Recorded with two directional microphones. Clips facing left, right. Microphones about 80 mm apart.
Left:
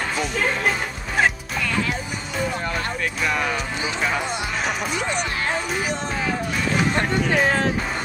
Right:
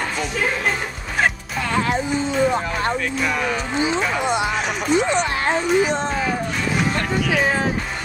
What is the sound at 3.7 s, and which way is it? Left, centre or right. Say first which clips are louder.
Speech: right 4 dB; right.